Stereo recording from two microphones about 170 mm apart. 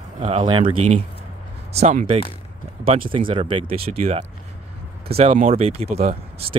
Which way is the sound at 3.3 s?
30° right (ahead or behind).